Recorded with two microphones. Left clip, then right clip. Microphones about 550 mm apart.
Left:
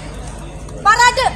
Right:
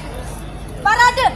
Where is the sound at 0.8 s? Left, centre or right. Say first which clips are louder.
Left 2 dB; centre.